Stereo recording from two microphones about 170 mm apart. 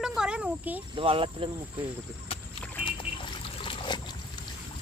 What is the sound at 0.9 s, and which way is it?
Speech, 30° right (ahead or behind).